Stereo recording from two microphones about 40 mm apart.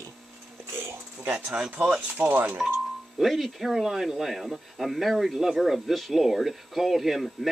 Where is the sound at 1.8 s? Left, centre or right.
Right.